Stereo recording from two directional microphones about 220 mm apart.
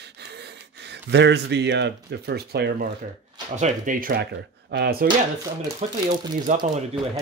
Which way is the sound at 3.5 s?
35° right (ahead or behind).